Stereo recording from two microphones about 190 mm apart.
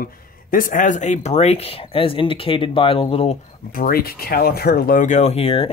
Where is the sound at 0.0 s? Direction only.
45° left (ahead or behind); by 3.3 s 30° left (ahead or behind).